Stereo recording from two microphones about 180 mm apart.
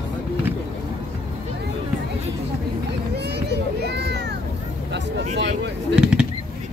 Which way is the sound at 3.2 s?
65° right (ahead or behind).